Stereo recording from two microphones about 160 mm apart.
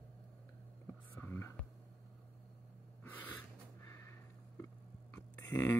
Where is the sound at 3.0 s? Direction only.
10° left (ahead or behind).